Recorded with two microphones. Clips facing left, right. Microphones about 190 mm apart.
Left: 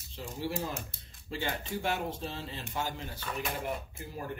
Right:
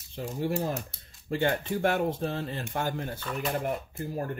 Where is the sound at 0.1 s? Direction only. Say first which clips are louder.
Right 6 dB; 55° right (ahead or behind).